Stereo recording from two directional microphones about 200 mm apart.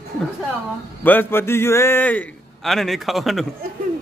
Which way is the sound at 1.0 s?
10° left (ahead or behind).